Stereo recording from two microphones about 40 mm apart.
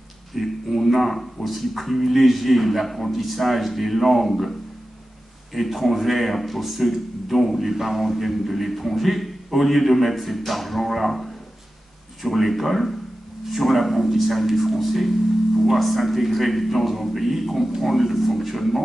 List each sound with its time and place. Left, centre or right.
0.3 s speech: centre